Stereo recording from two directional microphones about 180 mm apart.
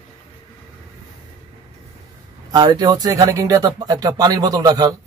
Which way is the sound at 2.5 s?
20° right (ahead or behind).